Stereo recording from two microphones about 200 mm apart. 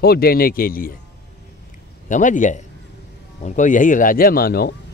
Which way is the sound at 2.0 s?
40° left (ahead or behind).